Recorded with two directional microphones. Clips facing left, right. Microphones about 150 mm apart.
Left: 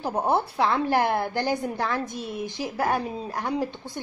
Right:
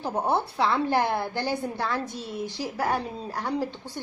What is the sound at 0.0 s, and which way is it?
A woman's voice, 10° left (ahead or behind).